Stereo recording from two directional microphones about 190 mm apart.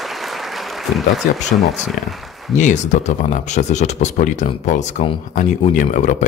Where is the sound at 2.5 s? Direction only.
40° left (ahead or behind).